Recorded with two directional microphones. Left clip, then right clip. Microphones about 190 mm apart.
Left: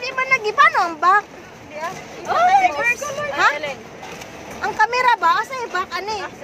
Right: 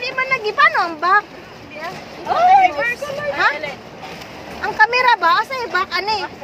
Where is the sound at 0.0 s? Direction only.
5° left (ahead or behind).